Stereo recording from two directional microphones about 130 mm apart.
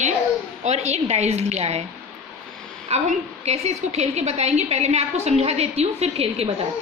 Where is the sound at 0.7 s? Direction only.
60° right (ahead or behind).